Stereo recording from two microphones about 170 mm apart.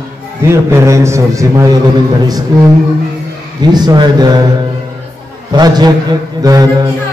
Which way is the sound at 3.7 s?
25° right (ahead or behind).